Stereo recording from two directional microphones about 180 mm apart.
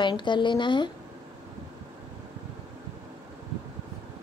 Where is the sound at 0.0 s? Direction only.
25° left (ahead or behind).